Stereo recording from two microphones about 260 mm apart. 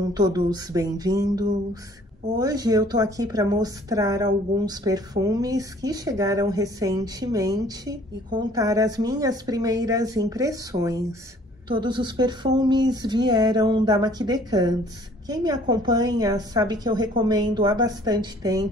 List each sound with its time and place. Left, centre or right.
0.0 s a woman's voice: centre